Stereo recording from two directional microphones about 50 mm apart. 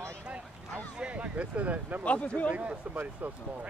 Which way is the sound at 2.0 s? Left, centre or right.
Left.